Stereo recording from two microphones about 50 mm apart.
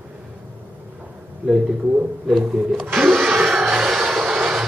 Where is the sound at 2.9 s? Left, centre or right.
Centre.